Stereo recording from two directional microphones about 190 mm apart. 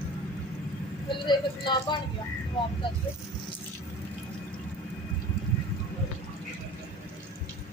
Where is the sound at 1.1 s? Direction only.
25° left (ahead or behind).